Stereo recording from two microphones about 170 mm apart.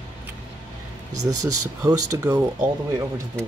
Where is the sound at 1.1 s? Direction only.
20° right (ahead or behind).